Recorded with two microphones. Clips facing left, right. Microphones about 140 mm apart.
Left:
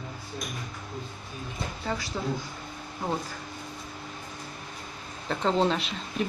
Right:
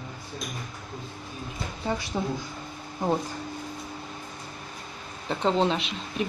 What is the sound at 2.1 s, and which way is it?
Speech, 20° right (ahead or behind).